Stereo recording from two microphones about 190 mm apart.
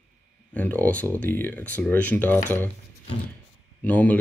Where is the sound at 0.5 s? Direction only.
10° left (ahead or behind).